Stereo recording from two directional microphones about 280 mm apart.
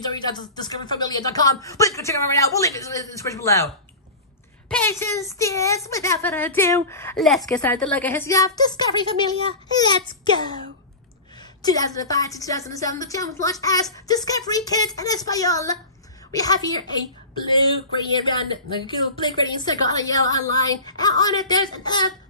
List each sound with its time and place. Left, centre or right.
0.0 s a woman's voice: centre
11.6 s a woman's voice: centre